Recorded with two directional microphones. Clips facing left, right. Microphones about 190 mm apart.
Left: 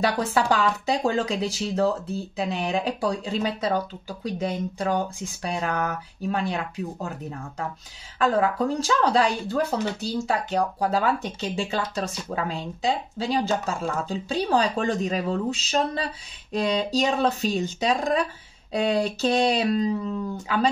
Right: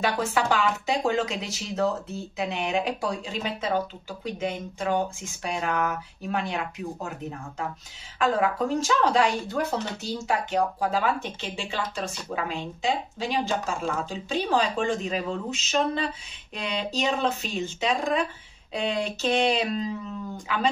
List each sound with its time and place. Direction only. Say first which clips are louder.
0.0 s speech: left 2 dB; 35° left (ahead or behind)
8.2 s speech: left 2 dB; 35° left (ahead or behind)